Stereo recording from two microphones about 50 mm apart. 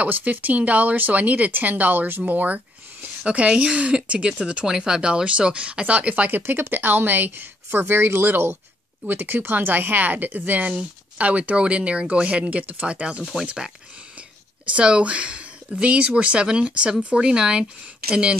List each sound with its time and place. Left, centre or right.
0.0 s speech: right
3.3 s speech: right
6.4 s a woman's voice: right
10.7 s speech: right
13.2 s speech: centre
14.7 s speech: right